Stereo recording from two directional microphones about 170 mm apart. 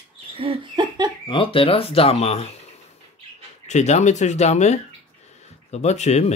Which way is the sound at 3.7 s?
40° left (ahead or behind).